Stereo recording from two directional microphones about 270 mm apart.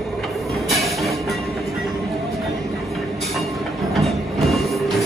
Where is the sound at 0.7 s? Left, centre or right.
Centre.